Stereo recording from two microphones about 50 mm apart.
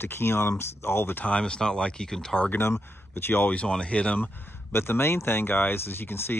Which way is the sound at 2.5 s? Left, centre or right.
Left.